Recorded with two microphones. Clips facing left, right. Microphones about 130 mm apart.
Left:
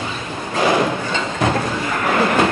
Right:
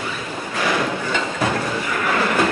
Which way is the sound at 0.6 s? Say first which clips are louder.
Left 5 dB; 25° left (ahead or behind).